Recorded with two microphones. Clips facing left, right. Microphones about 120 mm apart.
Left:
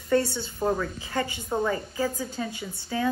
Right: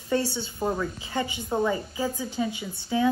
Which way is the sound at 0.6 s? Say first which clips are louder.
Left 2 dB; 5° right (ahead or behind).